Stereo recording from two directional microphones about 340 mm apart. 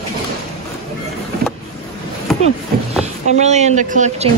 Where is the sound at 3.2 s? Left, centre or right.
Centre.